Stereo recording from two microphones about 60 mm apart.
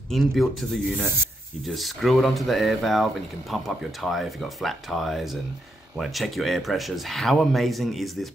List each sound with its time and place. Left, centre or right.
0.1 s speech: centre